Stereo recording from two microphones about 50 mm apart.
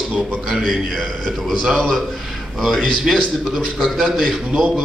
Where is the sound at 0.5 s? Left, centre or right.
Centre.